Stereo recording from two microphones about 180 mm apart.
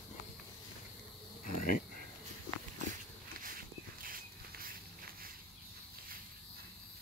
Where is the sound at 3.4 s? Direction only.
50° right (ahead or behind).